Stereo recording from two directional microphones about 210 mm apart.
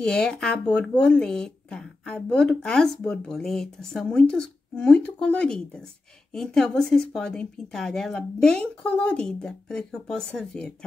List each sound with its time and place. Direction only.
0.0 s speech: 5° left (ahead or behind)